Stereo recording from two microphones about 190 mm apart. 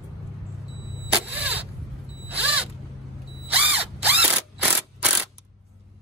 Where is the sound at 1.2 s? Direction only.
10° right (ahead or behind).